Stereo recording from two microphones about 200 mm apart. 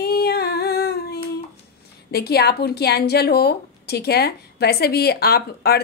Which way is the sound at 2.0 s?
55° left (ahead or behind).